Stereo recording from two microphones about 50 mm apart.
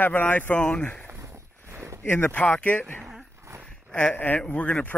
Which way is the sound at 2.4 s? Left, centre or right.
Centre.